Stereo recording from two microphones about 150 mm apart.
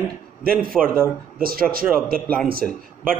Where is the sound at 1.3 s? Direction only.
75° right (ahead or behind).